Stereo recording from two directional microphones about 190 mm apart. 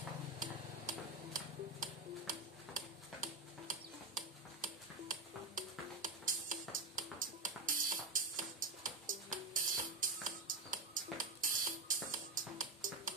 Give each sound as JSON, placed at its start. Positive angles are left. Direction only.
{"t": 0.4, "sound": "tick-tock", "side_deg": -45}
{"t": 6.7, "sound": "music", "side_deg": -45}